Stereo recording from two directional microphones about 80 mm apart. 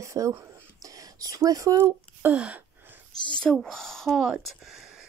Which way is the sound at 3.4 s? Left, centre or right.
Centre.